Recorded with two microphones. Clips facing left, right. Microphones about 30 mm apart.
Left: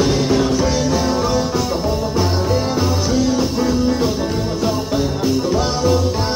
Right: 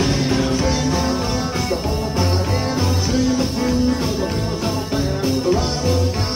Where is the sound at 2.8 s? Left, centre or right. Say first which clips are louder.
Left 2 dB; right.